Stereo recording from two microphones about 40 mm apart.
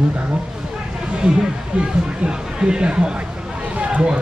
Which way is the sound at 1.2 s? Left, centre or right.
Right.